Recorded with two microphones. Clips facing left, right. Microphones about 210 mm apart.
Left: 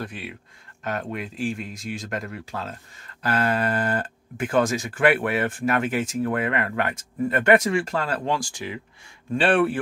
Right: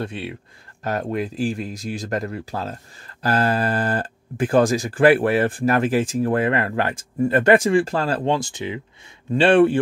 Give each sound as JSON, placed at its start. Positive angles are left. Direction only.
{"t": 0.0, "sound": "speech", "side_deg": -25}
{"t": 0.8, "sound": "speech", "side_deg": -35}